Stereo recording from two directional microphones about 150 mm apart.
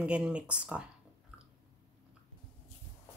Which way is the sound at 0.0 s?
5° right (ahead or behind).